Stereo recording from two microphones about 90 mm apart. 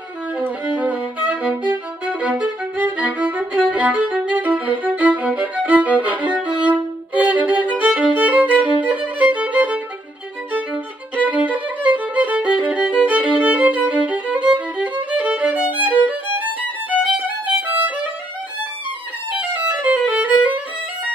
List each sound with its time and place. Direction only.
0.7 s violin: 15° right (ahead or behind)
19.3 s music: 15° right (ahead or behind)